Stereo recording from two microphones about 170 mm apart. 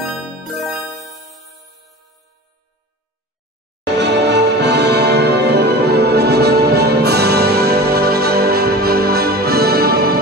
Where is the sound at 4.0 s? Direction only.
90° right.